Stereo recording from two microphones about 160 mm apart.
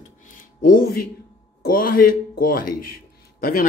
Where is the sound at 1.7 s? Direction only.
65° left (ahead or behind).